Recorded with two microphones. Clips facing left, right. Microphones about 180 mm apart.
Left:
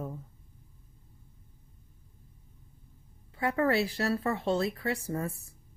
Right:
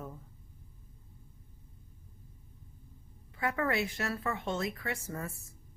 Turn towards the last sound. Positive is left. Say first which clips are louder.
# left 6 dB
turn(degrees=30)  # may be behind; listen again after turning